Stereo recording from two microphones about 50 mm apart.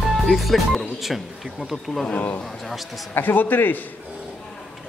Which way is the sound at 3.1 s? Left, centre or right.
Left.